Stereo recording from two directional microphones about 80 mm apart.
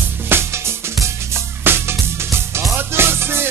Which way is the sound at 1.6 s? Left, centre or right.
Right.